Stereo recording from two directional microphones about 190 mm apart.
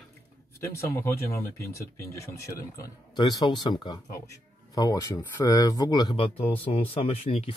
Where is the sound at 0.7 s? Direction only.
15° left (ahead or behind).